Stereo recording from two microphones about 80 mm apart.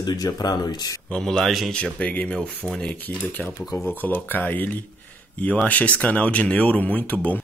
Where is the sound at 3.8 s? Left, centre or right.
Left.